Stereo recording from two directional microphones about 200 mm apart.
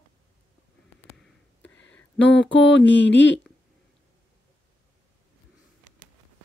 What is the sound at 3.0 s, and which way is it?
Speech, 65° left (ahead or behind).